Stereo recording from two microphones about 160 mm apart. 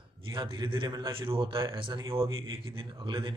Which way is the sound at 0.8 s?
20° right (ahead or behind).